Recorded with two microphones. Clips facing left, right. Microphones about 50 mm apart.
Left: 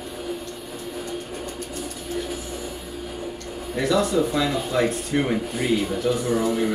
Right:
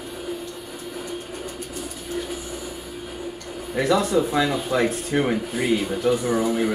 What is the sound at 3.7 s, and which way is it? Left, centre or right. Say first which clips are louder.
Speech: right 1 dB; centre.